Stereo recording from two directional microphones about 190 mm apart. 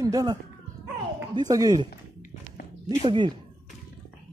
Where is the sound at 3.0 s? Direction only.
25° right (ahead or behind).